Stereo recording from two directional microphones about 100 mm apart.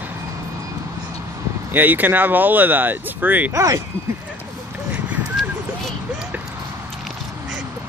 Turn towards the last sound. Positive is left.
turn(degrees=0)  # may be behind; listen again after turning